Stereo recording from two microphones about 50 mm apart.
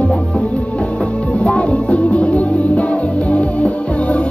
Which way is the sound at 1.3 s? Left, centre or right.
Left.